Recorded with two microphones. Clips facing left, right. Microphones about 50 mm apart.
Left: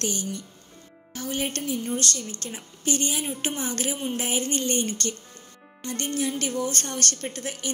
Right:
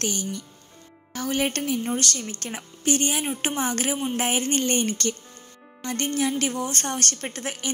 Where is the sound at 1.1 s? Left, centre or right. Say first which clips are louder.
Right 4 dB; right.